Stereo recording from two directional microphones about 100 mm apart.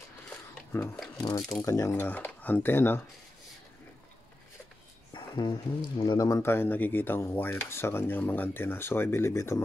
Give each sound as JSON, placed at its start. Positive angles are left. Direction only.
{"t": 1.1, "sound": "speech", "side_deg": 35}
{"t": 5.1, "sound": "speech", "side_deg": 50}
{"t": 6.1, "sound": "speech", "side_deg": 35}